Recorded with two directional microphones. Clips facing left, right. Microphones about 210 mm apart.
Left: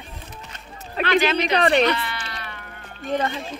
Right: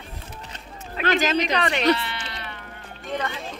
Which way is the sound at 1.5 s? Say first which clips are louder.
Left 6 dB; 35° left (ahead or behind).